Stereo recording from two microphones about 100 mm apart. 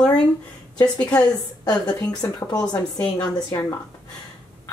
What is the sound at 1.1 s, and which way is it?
A woman's voice, 40° left (ahead or behind).